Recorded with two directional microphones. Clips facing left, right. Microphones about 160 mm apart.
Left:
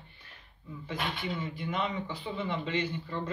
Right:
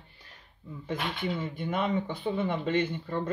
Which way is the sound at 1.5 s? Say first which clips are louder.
Right 4 dB; 50° right (ahead or behind).